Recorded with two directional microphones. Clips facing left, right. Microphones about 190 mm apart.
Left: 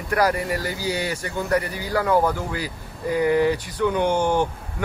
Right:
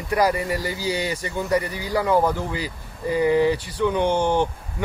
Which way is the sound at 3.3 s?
10° left (ahead or behind).